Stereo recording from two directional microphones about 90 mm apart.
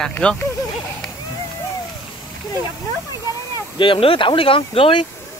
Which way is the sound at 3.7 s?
70° left (ahead or behind).